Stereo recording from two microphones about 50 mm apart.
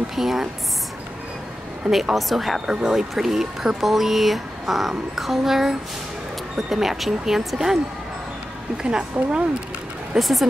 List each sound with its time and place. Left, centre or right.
0.1 s speech: centre
2.1 s speech: centre
2.6 s speech: centre
2.9 s speech: centre
8.8 s speech: centre
10.1 s speech: centre